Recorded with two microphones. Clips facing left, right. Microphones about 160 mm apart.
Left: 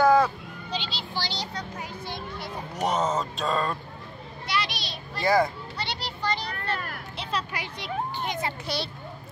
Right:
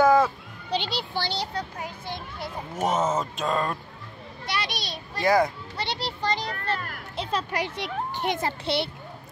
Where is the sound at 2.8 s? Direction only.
5° right (ahead or behind).